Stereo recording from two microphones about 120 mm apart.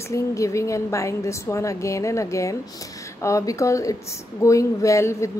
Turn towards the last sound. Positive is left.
turn(degrees=25)  # may be behind; listen again after turning